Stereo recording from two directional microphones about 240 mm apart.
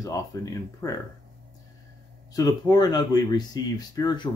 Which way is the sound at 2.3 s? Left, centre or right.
Centre.